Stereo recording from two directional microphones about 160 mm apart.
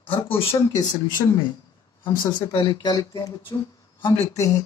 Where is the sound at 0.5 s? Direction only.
20° left (ahead or behind).